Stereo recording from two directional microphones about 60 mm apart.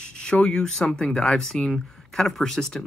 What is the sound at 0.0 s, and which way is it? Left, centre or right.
Speech, centre.